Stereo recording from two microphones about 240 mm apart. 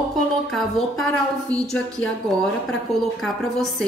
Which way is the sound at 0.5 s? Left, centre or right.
Centre.